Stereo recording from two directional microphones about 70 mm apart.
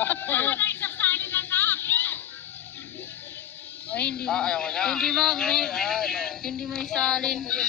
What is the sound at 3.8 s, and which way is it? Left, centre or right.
A man's voice, left.